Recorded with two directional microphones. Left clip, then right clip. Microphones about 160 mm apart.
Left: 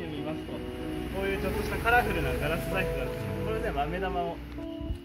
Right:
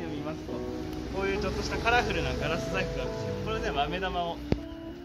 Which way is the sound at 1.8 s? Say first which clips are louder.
Left 1 dB; 30° left (ahead or behind).